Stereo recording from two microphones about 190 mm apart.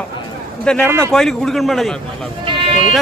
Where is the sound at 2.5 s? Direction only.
30° right (ahead or behind).